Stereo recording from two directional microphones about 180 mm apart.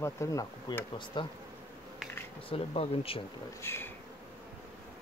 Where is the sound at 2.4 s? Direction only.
35° left (ahead or behind).